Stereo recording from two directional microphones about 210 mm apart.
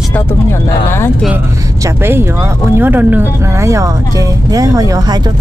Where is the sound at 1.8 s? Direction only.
10° right (ahead or behind).